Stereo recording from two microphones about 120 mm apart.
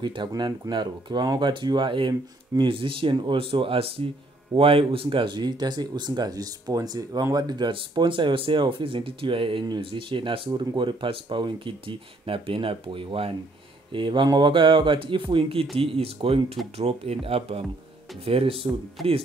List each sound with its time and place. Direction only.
0.0 s speech: 40° right (ahead or behind)
19.0 s speech: centre (ahead or behind)